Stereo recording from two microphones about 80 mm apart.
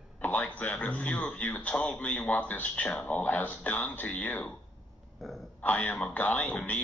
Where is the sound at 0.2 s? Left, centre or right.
Left.